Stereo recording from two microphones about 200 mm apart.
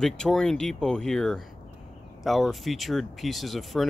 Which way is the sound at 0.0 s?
Centre (ahead or behind).